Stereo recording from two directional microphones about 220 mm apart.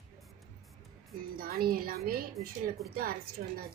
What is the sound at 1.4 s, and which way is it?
A woman's voice, 40° right (ahead or behind).